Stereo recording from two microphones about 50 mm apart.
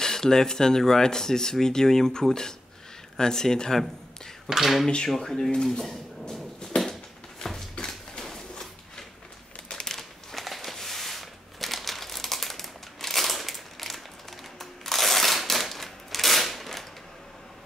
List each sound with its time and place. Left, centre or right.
0.0 s speech: centre
4.5 s speech: centre
4.8 s speech: centre
5.7 s a sound: centre
14.6 s crushing: centre